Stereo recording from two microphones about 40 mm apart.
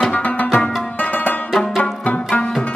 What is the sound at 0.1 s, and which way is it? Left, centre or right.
Music, left.